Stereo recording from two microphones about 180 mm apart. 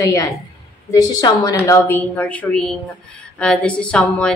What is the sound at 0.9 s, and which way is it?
A woman's voice, 20° left (ahead or behind).